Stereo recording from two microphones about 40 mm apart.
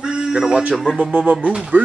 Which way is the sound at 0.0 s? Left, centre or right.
Right.